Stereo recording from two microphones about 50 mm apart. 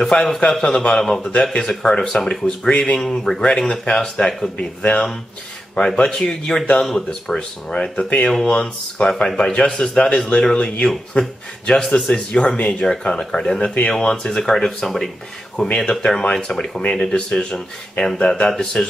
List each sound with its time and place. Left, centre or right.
0.0 s speech: centre
4.6 s a man's voice: left
12.8 s speech: centre